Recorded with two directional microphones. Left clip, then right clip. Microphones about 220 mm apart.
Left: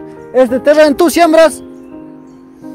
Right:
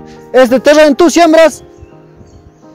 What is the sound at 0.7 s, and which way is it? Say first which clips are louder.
Speech: even; 20° right (ahead or behind).